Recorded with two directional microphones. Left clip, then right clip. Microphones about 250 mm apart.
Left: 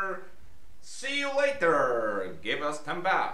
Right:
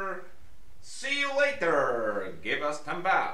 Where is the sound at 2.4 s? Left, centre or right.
Centre.